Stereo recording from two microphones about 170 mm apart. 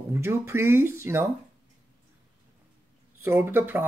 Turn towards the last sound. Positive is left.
turn(degrees=-15)  # may be behind; listen again after turning